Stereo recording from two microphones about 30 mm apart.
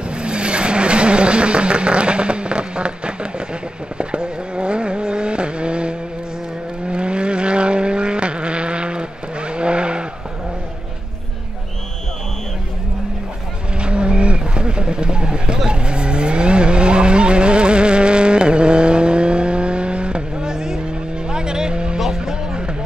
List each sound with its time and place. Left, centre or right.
0.1 s vehicle: right
13.7 s vehicle: right
21.9 s a sound: centre